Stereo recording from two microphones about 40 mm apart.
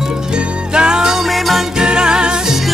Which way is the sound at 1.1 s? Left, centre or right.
Centre.